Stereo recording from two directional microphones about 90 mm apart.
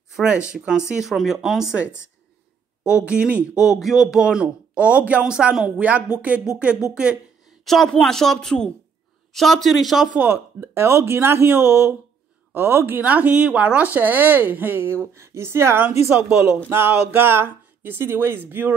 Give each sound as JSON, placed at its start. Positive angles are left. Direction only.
{"t": 0.1, "sound": "speech", "side_deg": -10}
{"t": 7.6, "sound": "speech", "side_deg": 5}
{"t": 10.1, "sound": "speech", "side_deg": -20}